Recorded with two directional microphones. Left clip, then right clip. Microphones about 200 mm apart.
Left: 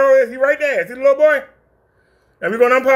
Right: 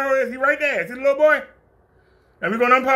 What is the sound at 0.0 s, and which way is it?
A man's voice, 15° left (ahead or behind).